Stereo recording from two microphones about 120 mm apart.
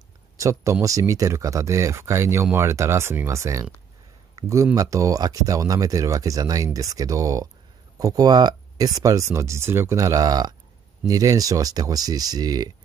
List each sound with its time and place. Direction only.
0.4 s speech: 25° right (ahead or behind)